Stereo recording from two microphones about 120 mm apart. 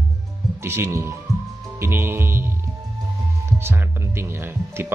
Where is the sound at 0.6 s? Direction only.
20° right (ahead or behind).